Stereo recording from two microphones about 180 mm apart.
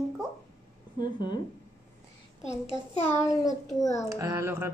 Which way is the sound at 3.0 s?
15° left (ahead or behind).